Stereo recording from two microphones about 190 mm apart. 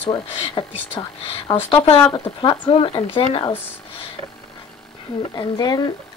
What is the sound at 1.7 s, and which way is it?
Speech, 30° left (ahead or behind).